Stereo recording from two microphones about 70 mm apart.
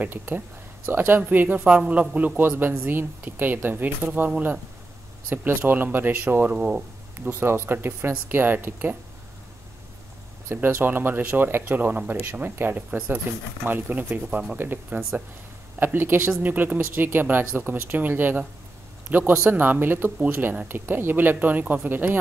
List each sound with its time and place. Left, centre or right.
0.0 s a man's voice: right
5.3 s a man's voice: right
6.5 s speech: centre
7.2 s speech: right
10.5 s a man's voice: right